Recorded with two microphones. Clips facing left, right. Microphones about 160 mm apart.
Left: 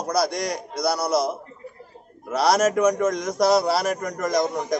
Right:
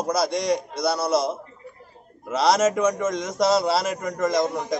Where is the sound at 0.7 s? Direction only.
25° right (ahead or behind).